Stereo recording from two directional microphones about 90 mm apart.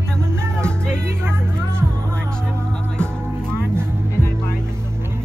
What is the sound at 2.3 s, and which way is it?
Music, 10° left (ahead or behind).